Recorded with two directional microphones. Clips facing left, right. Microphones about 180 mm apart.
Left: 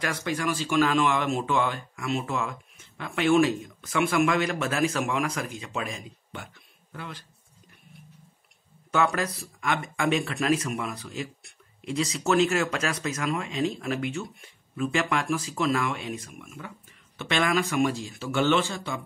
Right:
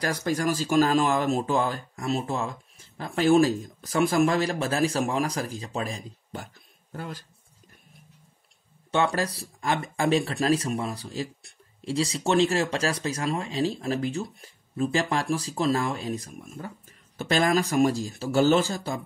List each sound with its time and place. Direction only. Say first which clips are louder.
0.0 s speech: right 3 dB; 40° right (ahead or behind)
8.9 s speech: right 1 dB; 30° right (ahead or behind)